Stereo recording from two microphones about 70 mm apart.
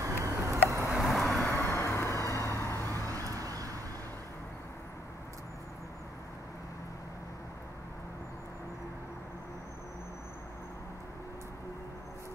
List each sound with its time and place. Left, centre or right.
0.0 s a sound: right
0.9 s vehicle: centre
1.4 s vehicle: left
3.3 s vehicle: right